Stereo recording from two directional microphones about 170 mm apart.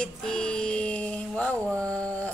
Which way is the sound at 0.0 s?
5° left (ahead or behind).